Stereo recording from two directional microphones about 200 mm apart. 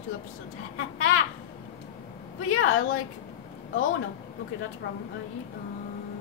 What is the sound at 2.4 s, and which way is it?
Speech, 90° left.